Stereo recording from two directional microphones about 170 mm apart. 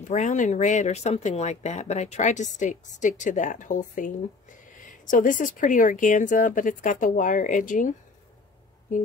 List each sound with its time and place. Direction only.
0.1 s speech: 45° left (ahead or behind)